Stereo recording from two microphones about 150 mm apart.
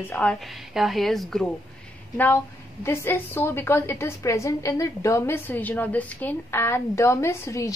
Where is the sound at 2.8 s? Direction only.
15° left (ahead or behind).